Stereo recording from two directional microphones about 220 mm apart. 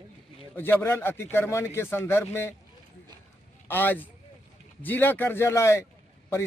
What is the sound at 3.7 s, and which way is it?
Speech, 10° left (ahead or behind).